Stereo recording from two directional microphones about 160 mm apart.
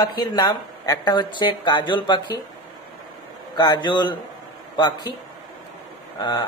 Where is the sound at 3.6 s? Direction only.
30° left (ahead or behind).